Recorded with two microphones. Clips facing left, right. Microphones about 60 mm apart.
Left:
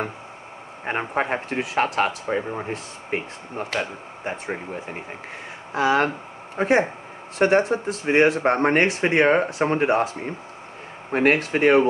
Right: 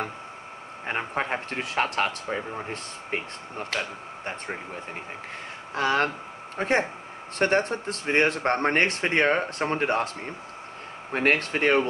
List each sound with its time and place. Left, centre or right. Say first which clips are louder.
0.8 s speech: left 4 dB; centre
2.2 s speech: left 5 dB; centre
5.7 s speech: left 4 dB; centre